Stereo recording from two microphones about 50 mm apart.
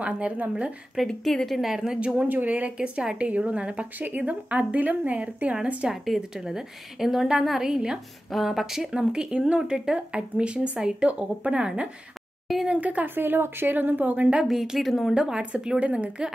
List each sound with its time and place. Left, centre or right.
0.0 s speech: right
1.0 s speech: centre
1.7 s a woman's voice: centre
2.0 s speech: right
6.3 s a woman's voice: centre
8.3 s speech: centre
8.9 s a woman's voice: centre
11.1 s speech: right
13.1 s a woman's voice: right
14.4 s speech: centre
15.1 s a woman's voice: centre